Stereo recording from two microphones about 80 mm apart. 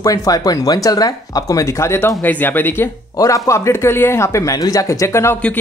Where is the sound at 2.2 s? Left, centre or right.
Left.